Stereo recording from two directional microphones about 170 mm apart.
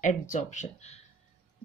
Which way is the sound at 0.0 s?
45° left (ahead or behind).